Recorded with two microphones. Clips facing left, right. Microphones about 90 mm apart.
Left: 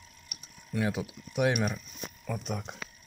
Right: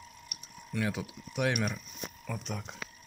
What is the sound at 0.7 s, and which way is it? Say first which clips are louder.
Speech: left 3 dB; 20° left (ahead or behind).